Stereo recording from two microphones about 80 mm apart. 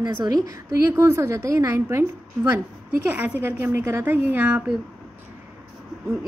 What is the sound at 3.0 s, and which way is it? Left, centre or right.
A woman's voice, centre.